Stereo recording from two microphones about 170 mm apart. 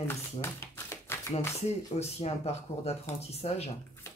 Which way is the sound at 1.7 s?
40° left (ahead or behind).